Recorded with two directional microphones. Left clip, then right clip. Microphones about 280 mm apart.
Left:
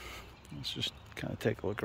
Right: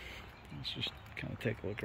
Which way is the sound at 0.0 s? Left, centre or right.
Centre.